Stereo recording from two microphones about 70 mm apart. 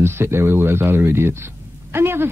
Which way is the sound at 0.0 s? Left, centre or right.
Right.